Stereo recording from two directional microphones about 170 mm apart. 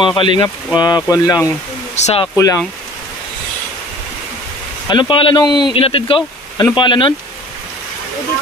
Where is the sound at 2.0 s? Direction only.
40° left (ahead or behind).